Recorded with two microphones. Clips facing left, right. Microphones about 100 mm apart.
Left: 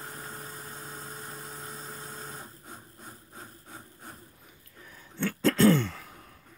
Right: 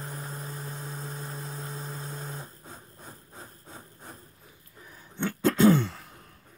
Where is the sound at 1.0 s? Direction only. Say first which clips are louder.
Right 3 dB; 30° right (ahead or behind).